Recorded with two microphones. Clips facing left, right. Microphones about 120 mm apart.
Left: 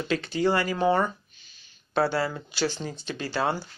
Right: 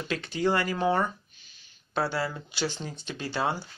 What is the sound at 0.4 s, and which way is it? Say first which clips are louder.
Speech: left 1 dB; 5° left (ahead or behind).